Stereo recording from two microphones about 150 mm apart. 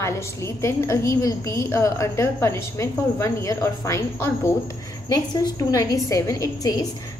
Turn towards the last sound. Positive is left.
turn(degrees=20)  # may be behind; listen again after turning